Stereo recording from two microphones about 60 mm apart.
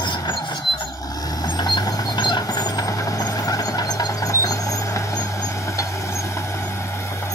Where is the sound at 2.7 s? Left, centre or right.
Left.